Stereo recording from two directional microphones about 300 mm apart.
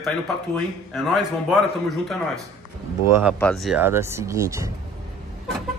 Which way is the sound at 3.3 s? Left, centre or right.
Centre.